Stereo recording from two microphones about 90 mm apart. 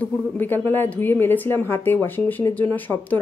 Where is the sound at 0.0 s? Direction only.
20° left (ahead or behind).